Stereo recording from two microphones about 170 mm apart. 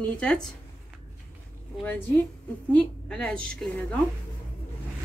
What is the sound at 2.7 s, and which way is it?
A woman's voice, 5° left (ahead or behind).